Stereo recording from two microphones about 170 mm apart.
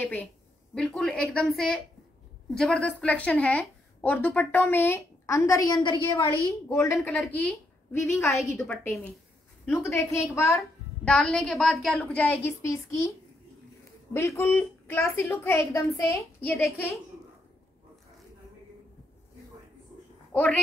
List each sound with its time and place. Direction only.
0.0 s a woman's voice: 10° left (ahead or behind)
10.6 s a woman's voice: centre (ahead or behind); by 13.1 s 20° left (ahead or behind)
14.1 s a woman's voice: 15° left (ahead or behind)